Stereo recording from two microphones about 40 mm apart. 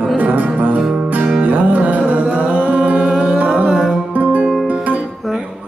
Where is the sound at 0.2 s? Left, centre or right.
Right.